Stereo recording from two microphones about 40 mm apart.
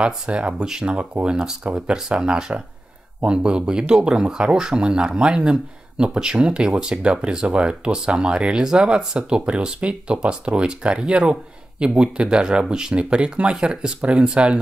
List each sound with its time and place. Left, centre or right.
0.0 s speech: right
1.6 s speech: right
2.0 s speech: right